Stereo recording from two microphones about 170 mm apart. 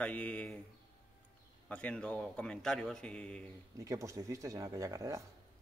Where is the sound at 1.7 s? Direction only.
5° left (ahead or behind).